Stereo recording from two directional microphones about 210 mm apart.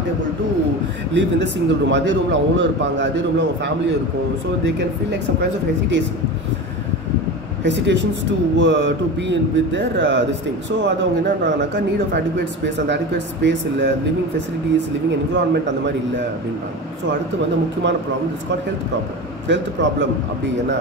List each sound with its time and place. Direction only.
1.1 s a man's voice: 55° right (ahead or behind)
5.4 s a man's voice: 55° right (ahead or behind)
7.6 s a man's voice: 55° right (ahead or behind)
15.0 s a man's voice: 55° right (ahead or behind)
17.8 s a man's voice: 60° right (ahead or behind)
19.4 s a man's voice: 60° right (ahead or behind)